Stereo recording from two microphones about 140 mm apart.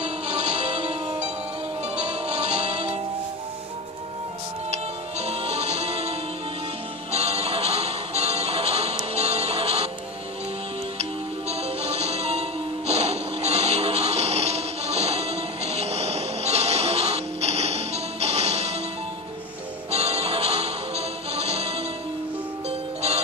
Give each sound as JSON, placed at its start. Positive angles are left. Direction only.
{"t": 0.0, "sound": "music", "side_deg": -50}
{"t": 5.2, "sound": "music", "side_deg": -50}
{"t": 11.0, "sound": "music", "side_deg": -50}
{"t": 19.9, "sound": "music", "side_deg": -45}